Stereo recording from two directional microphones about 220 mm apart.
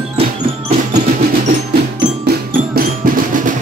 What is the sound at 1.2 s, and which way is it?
Percussion, 45° right (ahead or behind).